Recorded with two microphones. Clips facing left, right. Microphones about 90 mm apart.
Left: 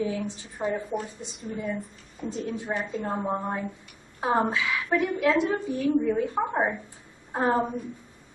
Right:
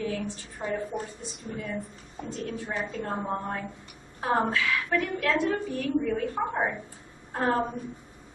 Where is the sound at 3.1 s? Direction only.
15° left (ahead or behind).